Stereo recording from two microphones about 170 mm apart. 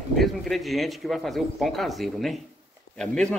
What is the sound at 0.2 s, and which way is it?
Speech, centre (ahead or behind).